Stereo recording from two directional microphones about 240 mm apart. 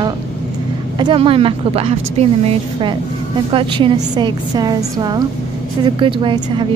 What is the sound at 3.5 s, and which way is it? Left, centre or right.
A woman's voice, right.